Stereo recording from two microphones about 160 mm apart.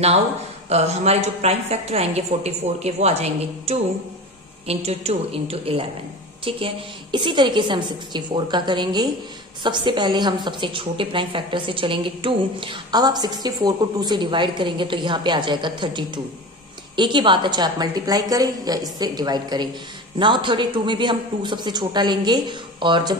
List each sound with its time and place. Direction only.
0.7 s a woman's voice: 40° right (ahead or behind)